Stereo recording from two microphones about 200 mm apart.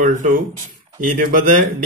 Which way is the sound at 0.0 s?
40° right (ahead or behind).